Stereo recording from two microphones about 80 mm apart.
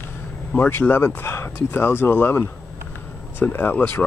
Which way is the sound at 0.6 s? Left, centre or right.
Left.